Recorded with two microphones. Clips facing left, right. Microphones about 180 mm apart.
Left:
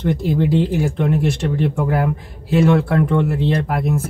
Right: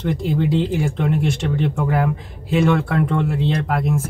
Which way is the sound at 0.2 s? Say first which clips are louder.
Left 1 dB; centre (ahead or behind).